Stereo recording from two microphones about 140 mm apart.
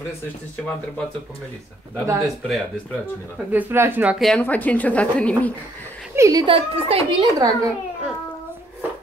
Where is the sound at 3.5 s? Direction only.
15° right (ahead or behind).